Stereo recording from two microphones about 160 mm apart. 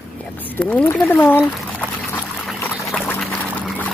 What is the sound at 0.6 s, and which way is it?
Speech, 10° left (ahead or behind).